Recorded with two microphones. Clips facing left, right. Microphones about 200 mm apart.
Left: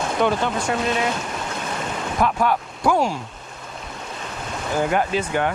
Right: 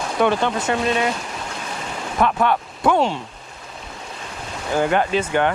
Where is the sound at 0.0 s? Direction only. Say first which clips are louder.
Right 2 dB; centre (ahead or behind).